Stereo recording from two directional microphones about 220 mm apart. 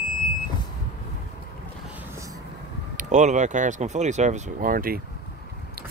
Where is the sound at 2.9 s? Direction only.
35° right (ahead or behind).